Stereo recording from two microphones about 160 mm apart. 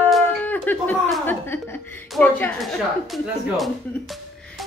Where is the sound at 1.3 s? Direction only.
15° left (ahead or behind).